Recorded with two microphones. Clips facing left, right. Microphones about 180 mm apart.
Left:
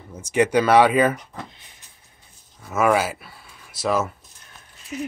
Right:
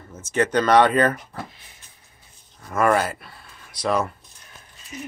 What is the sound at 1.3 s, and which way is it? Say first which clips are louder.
Speech: right 2 dB; 5° right (ahead or behind).